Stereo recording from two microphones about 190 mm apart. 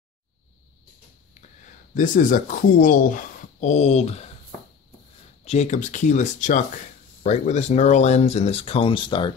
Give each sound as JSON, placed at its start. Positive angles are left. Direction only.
{"t": 2.0, "sound": "speech", "side_deg": 45}
{"t": 5.4, "sound": "speech", "side_deg": 35}